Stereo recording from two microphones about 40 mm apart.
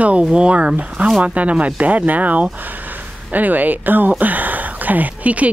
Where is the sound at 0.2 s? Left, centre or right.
Right.